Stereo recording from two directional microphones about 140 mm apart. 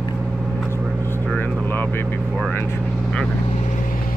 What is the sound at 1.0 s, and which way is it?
Vehicle, 15° left (ahead or behind).